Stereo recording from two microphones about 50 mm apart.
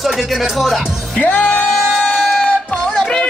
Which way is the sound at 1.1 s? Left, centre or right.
Left.